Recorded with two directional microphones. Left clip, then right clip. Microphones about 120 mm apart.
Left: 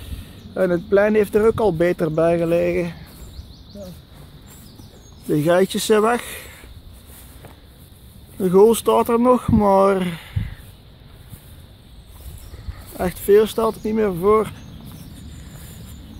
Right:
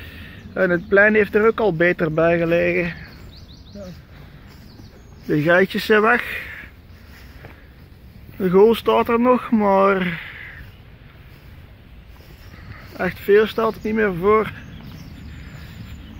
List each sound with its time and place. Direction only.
0.0 s a sound: 35° left (ahead or behind)
0.9 s speech: 30° left (ahead or behind)
5.3 s speech: 35° left (ahead or behind)
8.4 s speech: 35° left (ahead or behind)
13.0 s speech: 45° left (ahead or behind)
13.7 s speech: 35° left (ahead or behind)